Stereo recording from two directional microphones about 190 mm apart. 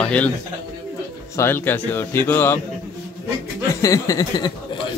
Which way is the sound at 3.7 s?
15° left (ahead or behind).